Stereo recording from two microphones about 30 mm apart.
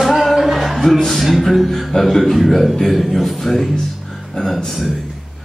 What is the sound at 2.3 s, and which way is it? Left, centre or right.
Music, centre.